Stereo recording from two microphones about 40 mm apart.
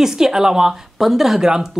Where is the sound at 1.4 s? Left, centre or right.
Centre.